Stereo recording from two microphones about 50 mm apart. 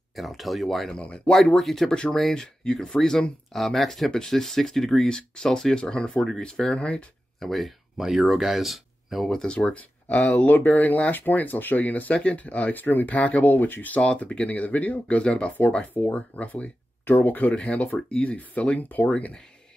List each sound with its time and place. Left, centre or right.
0.1 s speech: centre
0.9 s speech: left
1.3 s speech: centre
5.0 s speech: centre
7.3 s speech: centre
9.3 s speech: centre
9.8 s speech: left
15.9 s speech: left